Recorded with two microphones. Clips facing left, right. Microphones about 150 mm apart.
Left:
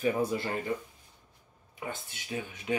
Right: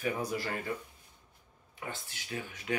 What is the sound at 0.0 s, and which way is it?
Speech, 25° left (ahead or behind).